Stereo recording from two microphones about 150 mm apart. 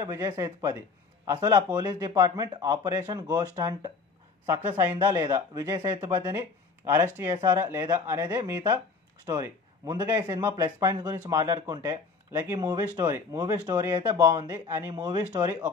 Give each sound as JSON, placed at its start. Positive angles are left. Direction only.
{"t": 0.0, "sound": "a man's voice", "side_deg": -25}